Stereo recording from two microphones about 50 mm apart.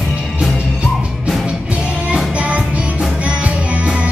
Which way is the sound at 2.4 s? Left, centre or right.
Right.